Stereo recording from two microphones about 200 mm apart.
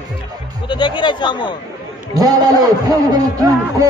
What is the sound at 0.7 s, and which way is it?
Speech, 25° left (ahead or behind).